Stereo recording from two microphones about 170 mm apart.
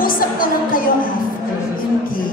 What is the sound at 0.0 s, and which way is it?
Music, 55° left (ahead or behind).